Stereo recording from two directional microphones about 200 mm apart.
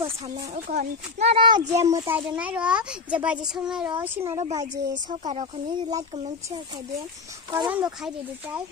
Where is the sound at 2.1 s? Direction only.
10° right (ahead or behind).